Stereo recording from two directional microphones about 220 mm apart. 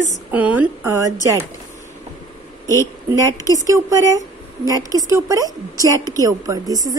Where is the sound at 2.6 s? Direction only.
15° left (ahead or behind).